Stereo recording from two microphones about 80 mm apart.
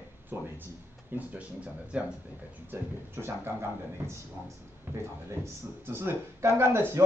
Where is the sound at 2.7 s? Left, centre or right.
Right.